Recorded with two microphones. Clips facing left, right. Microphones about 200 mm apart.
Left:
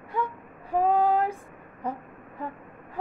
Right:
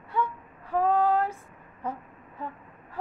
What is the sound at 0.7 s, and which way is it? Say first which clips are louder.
Child singing: left 1 dB; 15° left (ahead or behind).